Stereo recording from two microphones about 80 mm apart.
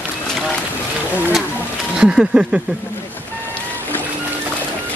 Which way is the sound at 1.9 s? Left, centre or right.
Centre.